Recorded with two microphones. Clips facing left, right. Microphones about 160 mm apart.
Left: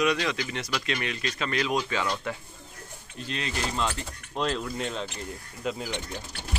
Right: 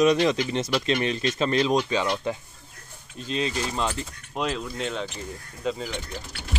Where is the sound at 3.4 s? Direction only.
15° right (ahead or behind); by 5.9 s 5° left (ahead or behind).